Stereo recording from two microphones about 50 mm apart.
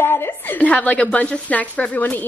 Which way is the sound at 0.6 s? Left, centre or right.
Left.